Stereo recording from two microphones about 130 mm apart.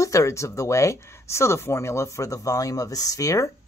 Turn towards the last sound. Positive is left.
turn(degrees=25)  # may be behind; listen again after turning